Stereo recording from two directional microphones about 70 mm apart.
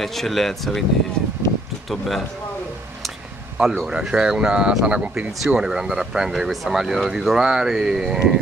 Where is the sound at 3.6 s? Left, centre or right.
Centre.